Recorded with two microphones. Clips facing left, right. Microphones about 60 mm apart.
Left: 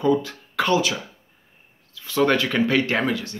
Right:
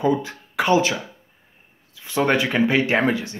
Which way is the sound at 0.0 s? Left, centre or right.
Right.